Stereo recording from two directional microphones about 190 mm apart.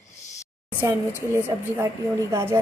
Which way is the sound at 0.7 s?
10° right (ahead or behind).